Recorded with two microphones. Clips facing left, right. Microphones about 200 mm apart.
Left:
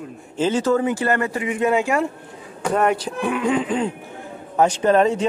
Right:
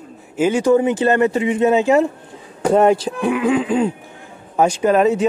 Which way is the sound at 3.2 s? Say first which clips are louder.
Right 4 dB; 10° right (ahead or behind).